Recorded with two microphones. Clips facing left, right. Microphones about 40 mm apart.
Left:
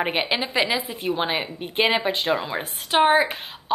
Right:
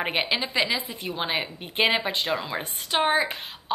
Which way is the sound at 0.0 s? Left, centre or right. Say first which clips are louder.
Left 2 dB; centre.